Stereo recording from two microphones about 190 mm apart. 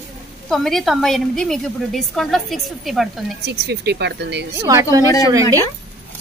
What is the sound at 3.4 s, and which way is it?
Speech, 60° right (ahead or behind).